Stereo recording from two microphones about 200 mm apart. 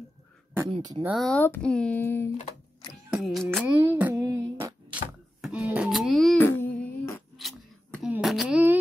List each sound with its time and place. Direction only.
0.7 s speech: 25° right (ahead or behind)
1.0 s speech: centre (ahead or behind)
2.9 s music: centre (ahead or behind)
3.8 s a sound: 10° right (ahead or behind)
6.5 s humming: 10° left (ahead or behind)
7.3 s scissors: centre (ahead or behind)